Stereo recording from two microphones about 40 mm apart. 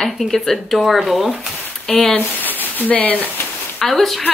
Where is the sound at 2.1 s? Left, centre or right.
Left.